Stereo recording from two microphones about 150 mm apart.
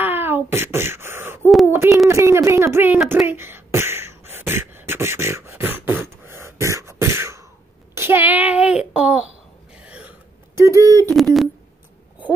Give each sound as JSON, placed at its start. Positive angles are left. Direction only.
{"t": 0.0, "sound": "wail", "side_deg": -15}
{"t": 1.7, "sound": "speech", "side_deg": -20}
{"t": 3.1, "sound": "beatboxing", "side_deg": -15}
{"t": 7.9, "sound": "child singing", "side_deg": -15}
{"t": 9.8, "sound": "a sound", "side_deg": -10}
{"t": 11.1, "sound": "speech", "side_deg": 0}